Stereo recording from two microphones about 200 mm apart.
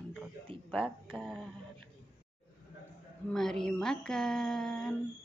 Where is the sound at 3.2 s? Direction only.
Centre (ahead or behind).